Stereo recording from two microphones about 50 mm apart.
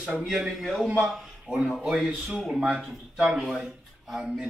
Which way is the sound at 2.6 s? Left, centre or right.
Centre.